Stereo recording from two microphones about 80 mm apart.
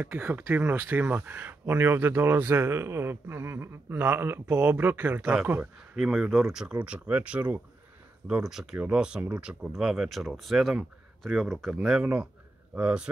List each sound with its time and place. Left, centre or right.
0.0 s speech: centre
5.9 s speech: centre
8.3 s speech: centre
11.8 s speech: centre